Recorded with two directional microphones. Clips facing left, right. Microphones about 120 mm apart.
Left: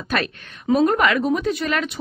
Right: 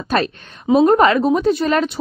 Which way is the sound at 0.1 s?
30° right (ahead or behind).